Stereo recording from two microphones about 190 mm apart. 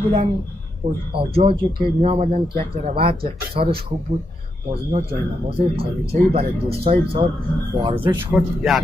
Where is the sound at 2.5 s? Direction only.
50° right (ahead or behind).